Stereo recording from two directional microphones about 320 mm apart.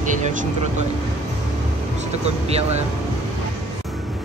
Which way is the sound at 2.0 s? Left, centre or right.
Centre.